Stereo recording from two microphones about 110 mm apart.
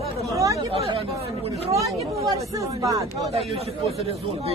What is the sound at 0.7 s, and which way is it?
Speech, 60° right (ahead or behind).